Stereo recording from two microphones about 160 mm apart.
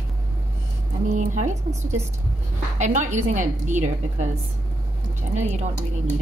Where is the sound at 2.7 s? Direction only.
45° right (ahead or behind).